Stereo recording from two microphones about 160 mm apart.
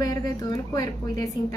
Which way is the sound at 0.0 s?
25° left (ahead or behind).